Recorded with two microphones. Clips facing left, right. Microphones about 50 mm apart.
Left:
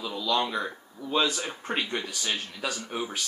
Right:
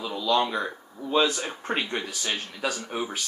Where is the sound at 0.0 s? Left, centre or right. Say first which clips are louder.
Right 3 dB; centre.